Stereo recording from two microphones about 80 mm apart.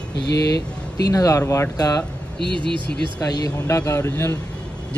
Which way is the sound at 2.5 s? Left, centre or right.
Right.